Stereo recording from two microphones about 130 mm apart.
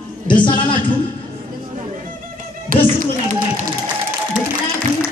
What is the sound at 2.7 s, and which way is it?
Children playing, 90° right.